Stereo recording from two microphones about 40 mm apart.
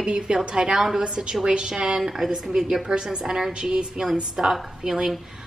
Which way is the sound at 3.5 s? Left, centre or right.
Right.